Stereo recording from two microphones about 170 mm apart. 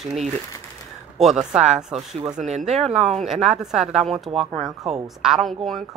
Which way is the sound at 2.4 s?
45° right (ahead or behind).